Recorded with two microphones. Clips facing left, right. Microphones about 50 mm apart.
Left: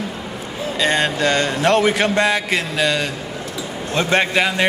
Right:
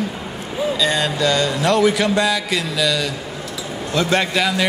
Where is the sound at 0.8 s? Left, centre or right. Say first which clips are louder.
Left 4 dB; left.